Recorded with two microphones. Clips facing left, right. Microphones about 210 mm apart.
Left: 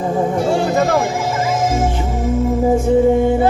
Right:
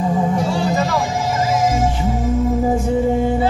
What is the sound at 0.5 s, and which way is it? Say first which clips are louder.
Music: left 4 dB; 50° left (ahead or behind).